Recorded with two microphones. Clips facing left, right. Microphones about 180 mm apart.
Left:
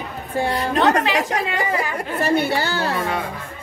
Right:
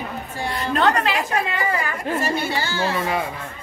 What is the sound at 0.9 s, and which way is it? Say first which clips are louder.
Speech: left 2 dB; 80° left.